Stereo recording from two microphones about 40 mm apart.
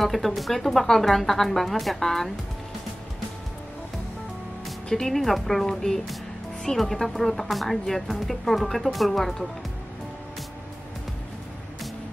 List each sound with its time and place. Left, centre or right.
0.0 s speech: centre
4.8 s speech: centre
5.1 s speech: centre